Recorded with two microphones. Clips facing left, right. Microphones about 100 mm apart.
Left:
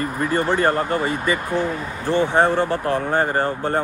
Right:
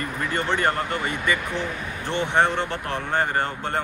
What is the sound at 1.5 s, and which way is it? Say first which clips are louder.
Speech: left 6 dB; 20° right (ahead or behind).